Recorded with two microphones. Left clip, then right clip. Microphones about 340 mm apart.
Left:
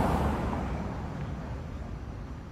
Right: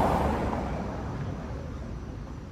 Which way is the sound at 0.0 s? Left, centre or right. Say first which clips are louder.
Right 4 dB; right.